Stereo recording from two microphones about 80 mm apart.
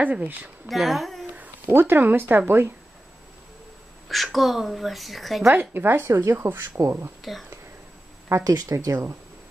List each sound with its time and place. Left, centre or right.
0.0 s speech: centre
0.7 s a woman's voice: centre
1.3 s speech: right
4.1 s speech: centre
5.5 s speech: right
8.3 s speech: right